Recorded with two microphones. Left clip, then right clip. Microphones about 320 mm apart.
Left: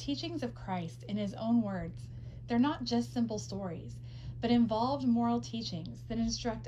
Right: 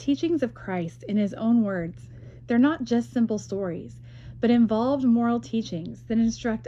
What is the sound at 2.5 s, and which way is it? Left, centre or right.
Speech, centre.